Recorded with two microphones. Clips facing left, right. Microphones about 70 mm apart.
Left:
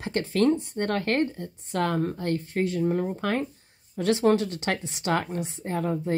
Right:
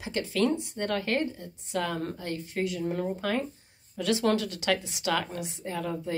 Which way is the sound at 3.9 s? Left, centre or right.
Left.